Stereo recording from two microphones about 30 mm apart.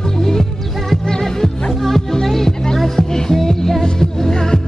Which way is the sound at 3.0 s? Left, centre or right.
Centre.